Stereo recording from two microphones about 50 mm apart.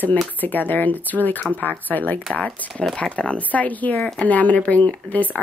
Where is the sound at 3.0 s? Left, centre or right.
Left.